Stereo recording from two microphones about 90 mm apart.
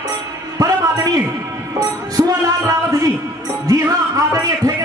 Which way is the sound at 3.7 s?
45° right (ahead or behind).